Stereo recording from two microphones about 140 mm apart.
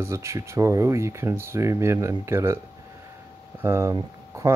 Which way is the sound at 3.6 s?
20° right (ahead or behind).